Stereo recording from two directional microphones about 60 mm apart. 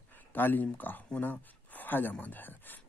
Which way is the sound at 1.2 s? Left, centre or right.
Left.